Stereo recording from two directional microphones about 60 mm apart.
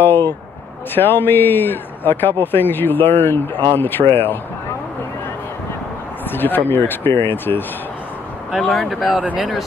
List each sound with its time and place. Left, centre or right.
0.0 s a sound: left
0.9 s a man's voice: left
6.2 s a man's voice: left
8.5 s speech: centre